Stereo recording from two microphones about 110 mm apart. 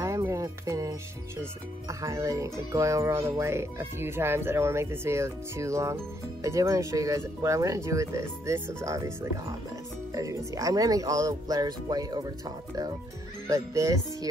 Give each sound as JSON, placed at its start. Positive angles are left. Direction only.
{"t": 0.0, "sound": "music", "side_deg": -25}
{"t": 1.4, "sound": "speech", "side_deg": -30}